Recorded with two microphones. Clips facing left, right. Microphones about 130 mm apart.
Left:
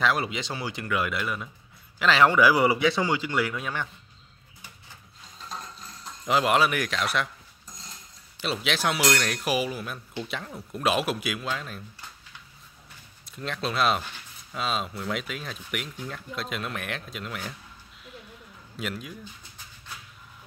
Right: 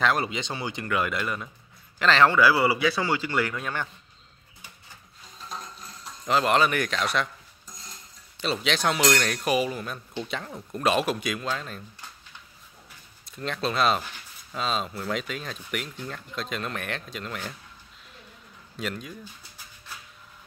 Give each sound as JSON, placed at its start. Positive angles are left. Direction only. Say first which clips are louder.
{"t": 0.0, "sound": "speech", "louder": "right 1 dB", "side_deg": 5}
{"t": 6.2, "sound": "speech", "louder": "even", "side_deg": 10}
{"t": 8.4, "sound": "speech", "louder": "right 1 dB", "side_deg": 5}
{"t": 13.2, "sound": "speech", "louder": "right 2 dB", "side_deg": 0}
{"t": 18.8, "sound": "speech", "louder": "right 1 dB", "side_deg": 5}